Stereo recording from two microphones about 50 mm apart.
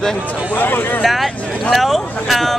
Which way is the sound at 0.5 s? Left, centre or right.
Left.